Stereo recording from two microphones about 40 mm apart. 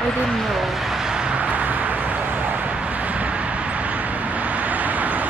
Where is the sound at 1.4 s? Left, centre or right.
Right.